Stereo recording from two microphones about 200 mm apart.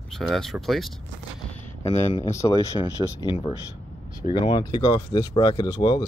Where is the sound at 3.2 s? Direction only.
25° left (ahead or behind).